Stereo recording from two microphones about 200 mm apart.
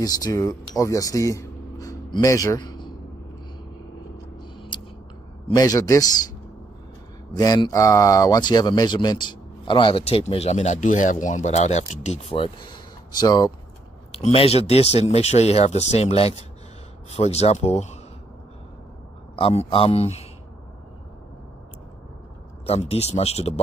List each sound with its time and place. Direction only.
0.0 s speech: 20° left (ahead or behind)
4.4 s a sound: 25° left (ahead or behind)
5.5 s a man's voice: 15° left (ahead or behind)
7.3 s speech: 20° left (ahead or behind)
19.3 s speech: 30° left (ahead or behind)
22.7 s speech: 30° left (ahead or behind)